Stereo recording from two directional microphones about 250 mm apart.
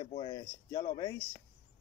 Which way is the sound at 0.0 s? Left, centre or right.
Centre.